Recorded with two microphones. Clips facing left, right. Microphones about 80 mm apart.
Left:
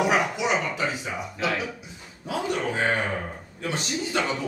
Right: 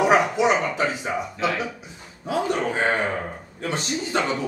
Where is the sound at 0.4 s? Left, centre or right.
Right.